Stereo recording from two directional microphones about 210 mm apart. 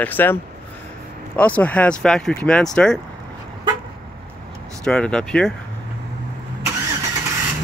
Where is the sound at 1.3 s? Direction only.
5° left (ahead or behind).